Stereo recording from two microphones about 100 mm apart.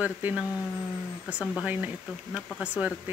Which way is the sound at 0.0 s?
15° right (ahead or behind).